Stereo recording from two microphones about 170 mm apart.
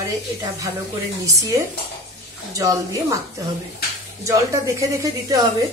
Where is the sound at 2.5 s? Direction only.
20° right (ahead or behind).